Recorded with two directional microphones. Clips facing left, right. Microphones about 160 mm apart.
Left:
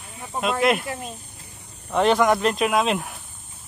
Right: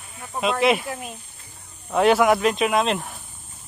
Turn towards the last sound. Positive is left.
turn(degrees=0)  # may be behind; listen again after turning